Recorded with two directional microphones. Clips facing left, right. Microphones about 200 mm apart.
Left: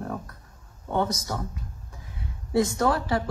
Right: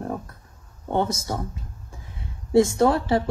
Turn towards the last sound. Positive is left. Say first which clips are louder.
# right 5 dB
turn(degrees=-25)  # may be behind; listen again after turning